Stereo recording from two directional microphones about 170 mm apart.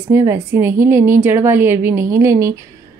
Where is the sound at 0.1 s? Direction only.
15° right (ahead or behind).